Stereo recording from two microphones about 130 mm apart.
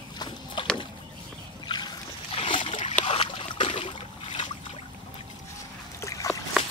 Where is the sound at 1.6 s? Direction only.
35° left (ahead or behind).